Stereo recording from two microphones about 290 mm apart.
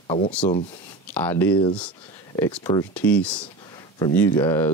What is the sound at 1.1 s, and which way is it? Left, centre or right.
Speech, centre.